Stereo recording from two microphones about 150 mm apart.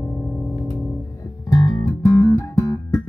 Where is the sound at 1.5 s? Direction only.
25° left (ahead or behind).